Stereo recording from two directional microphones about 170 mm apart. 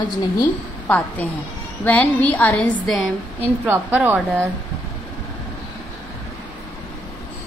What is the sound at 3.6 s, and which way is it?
Speech, 10° right (ahead or behind).